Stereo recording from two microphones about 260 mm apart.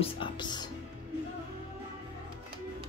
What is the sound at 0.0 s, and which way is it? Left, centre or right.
Speech, centre.